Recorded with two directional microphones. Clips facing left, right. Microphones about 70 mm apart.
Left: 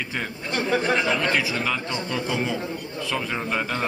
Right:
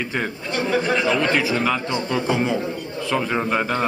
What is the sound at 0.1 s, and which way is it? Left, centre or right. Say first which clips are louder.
A man's voice: right 3 dB; centre.